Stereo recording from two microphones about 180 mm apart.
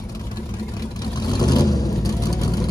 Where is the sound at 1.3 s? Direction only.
20° left (ahead or behind).